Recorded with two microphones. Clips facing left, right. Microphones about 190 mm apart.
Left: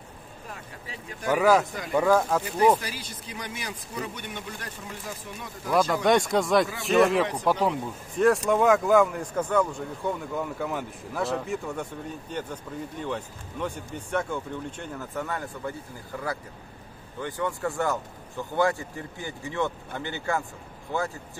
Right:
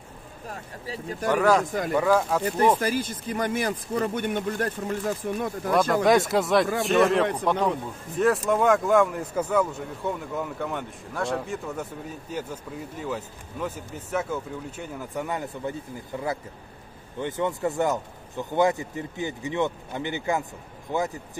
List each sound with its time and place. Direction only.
0.5 s speech: 35° right (ahead or behind)
1.2 s speech: 5° left (ahead or behind)
2.8 s speech: 50° right (ahead or behind)
5.7 s speech: centre (ahead or behind); by 21.2 s 20° right (ahead or behind)